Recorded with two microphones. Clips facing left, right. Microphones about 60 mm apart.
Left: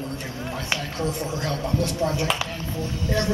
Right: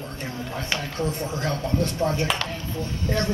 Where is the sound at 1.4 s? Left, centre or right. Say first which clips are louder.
Right 1 dB; right.